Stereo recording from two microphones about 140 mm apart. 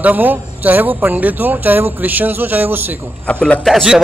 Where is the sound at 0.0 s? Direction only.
15° right (ahead or behind).